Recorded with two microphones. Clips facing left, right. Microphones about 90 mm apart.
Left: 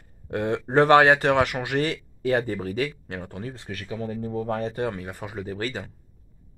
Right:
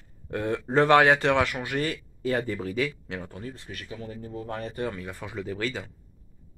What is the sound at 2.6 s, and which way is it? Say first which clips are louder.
Speech: left 1 dB; 50° left (ahead or behind).